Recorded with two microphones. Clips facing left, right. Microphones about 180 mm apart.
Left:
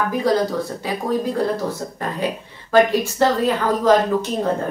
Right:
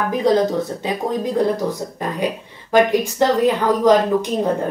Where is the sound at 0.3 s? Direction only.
20° right (ahead or behind).